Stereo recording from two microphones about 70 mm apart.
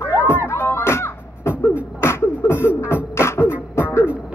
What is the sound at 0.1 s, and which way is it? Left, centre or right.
Music, right.